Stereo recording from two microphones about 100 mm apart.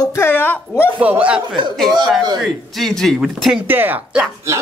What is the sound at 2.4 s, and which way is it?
Speech, 5° left (ahead or behind).